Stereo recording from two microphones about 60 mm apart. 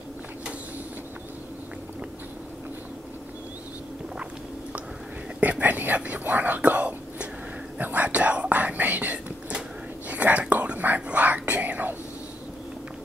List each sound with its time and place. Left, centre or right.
5.4 s whispering: right